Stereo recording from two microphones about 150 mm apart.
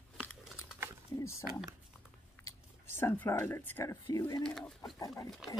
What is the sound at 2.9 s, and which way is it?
Speech, 15° left (ahead or behind).